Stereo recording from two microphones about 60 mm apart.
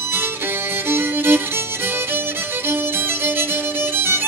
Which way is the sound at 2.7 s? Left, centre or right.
Right.